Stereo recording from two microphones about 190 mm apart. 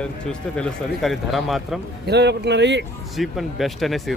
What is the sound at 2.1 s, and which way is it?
Speech, 65° right (ahead or behind).